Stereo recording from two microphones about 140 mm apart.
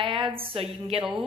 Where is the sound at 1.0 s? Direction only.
Centre (ahead or behind).